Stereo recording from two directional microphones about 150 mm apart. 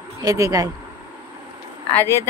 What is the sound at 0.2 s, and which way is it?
Speech, 25° right (ahead or behind).